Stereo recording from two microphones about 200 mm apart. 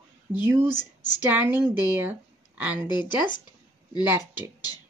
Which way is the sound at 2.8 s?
20° left (ahead or behind).